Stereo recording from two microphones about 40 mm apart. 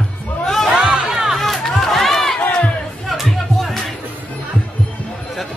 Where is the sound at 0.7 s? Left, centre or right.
Right.